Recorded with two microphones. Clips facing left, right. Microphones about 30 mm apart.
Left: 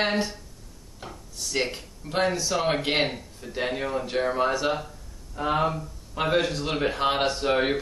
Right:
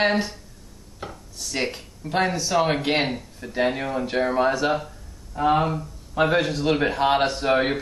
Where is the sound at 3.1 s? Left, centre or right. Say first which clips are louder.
Right 3 dB; centre.